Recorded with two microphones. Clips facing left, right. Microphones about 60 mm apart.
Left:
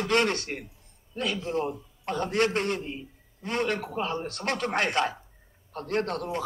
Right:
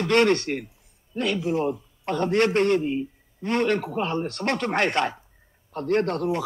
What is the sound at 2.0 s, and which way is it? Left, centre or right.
A man's voice, right.